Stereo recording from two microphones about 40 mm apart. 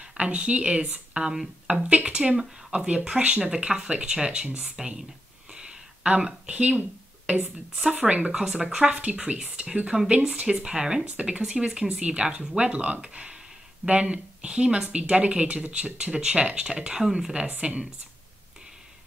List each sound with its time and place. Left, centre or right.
0.0 s speech: right
5.5 s a sound: right
7.9 s speech: right